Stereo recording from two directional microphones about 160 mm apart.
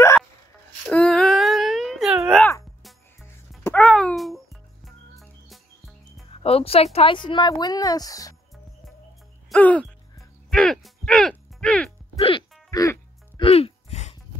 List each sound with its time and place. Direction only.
0.8 s a sound: 5° left (ahead or behind)
3.2 s music: 15° left (ahead or behind)
3.8 s a sound: 5° left (ahead or behind)
4.8 s music: centre (ahead or behind)
6.3 s speech: 40° left (ahead or behind); by 8.4 s 20° left (ahead or behind)
9.5 s speech: 10° left (ahead or behind)
10.5 s a sound: 5° left (ahead or behind)
12.2 s music: 35° left (ahead or behind)
12.7 s music: 20° left (ahead or behind)
13.4 s music: 35° left (ahead or behind)